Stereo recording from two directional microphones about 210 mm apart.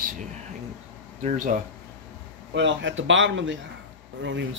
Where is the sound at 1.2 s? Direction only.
35° right (ahead or behind).